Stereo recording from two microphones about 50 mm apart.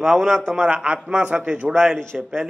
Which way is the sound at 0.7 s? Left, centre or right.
Right.